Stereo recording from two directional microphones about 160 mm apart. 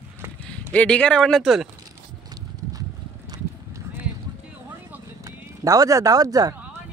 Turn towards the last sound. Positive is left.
turn(degrees=-25)  # may be behind; listen again after turning